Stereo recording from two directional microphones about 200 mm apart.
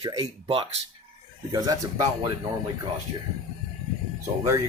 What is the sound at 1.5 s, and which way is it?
Speech, 20° right (ahead or behind).